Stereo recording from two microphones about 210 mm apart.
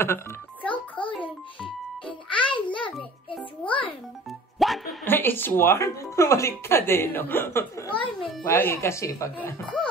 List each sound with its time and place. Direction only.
0.0 s music: 10° left (ahead or behind)
2.0 s music: 25° left (ahead or behind)
4.6 s music: centre (ahead or behind)
5.0 s speech: 10° left (ahead or behind)
8.2 s music: centre (ahead or behind)
8.5 s speech: 10° left (ahead or behind)